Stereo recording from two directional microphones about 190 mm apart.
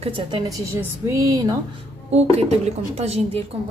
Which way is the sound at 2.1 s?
35° right (ahead or behind).